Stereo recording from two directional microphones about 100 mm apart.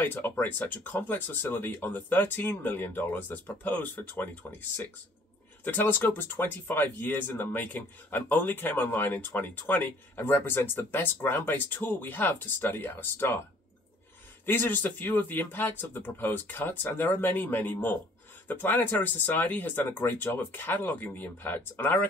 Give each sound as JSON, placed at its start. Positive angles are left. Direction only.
{"t": 0.0, "sound": "speech", "side_deg": 20}
{"t": 14.4, "sound": "speech", "side_deg": 20}